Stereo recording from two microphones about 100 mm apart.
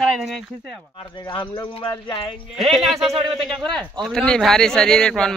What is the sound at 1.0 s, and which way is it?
Speech, 55° left (ahead or behind).